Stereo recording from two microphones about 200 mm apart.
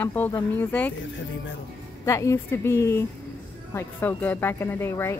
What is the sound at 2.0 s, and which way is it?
A woman's voice, 15° left (ahead or behind).